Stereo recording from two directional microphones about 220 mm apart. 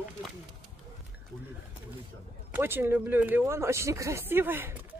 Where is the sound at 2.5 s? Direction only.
10° right (ahead or behind).